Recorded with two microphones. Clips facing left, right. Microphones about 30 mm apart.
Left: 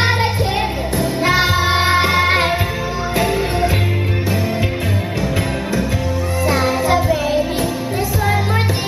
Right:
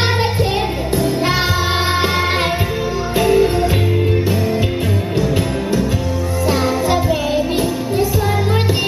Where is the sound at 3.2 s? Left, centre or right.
Centre.